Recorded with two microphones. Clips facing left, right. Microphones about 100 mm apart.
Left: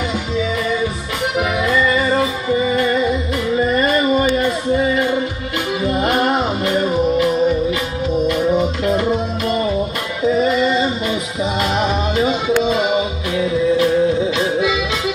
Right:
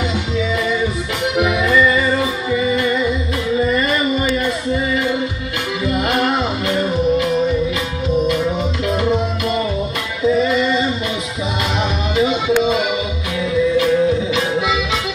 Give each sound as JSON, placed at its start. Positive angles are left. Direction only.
{"t": 2.5, "sound": "music", "side_deg": 40}
{"t": 3.6, "sound": "a sound", "side_deg": 40}
{"t": 5.9, "sound": "music", "side_deg": 40}
{"t": 10.2, "sound": "music", "side_deg": 35}
{"t": 12.6, "sound": "music", "side_deg": 35}